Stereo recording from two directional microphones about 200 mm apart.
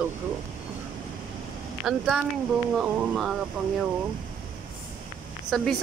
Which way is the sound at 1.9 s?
5° right (ahead or behind).